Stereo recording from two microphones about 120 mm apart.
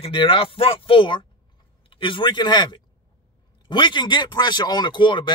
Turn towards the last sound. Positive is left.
turn(degrees=40)  # may be behind; listen again after turning